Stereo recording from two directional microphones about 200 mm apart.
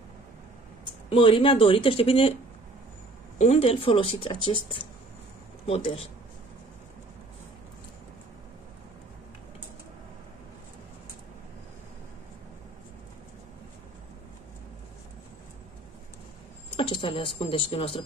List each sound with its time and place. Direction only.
1.1 s speech: 25° left (ahead or behind)
3.3 s speech: 30° left (ahead or behind)
16.7 s a woman's voice: 25° left (ahead or behind)